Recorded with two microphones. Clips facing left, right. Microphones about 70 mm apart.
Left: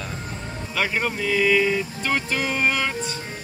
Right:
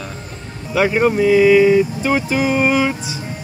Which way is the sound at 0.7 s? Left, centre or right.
Centre.